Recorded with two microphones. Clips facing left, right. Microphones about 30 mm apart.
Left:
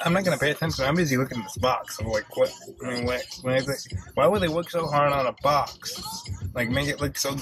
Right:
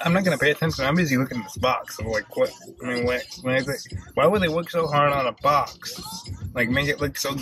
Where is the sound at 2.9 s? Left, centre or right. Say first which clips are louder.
Right 4 dB; centre.